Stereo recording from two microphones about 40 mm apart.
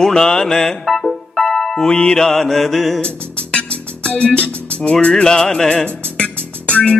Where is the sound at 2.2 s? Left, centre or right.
Centre.